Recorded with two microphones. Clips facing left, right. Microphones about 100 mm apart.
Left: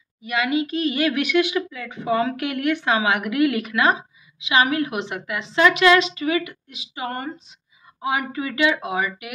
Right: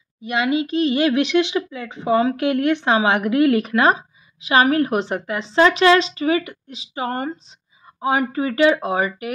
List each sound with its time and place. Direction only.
0.2 s speech: 30° right (ahead or behind)